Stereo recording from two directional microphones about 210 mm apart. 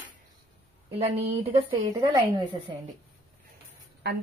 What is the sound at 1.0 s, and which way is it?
A woman's voice, 25° right (ahead or behind).